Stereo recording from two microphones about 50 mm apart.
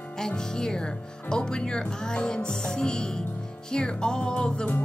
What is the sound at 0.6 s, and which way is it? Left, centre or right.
Speech, centre.